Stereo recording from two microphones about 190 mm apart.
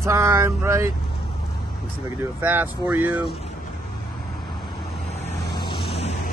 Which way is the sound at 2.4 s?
10° right (ahead or behind).